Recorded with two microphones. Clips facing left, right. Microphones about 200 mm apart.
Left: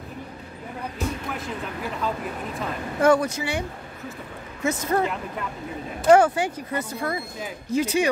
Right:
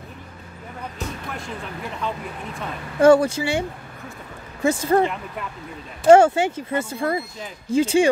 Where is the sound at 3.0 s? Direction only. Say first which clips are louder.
Right 5 dB; 30° right (ahead or behind).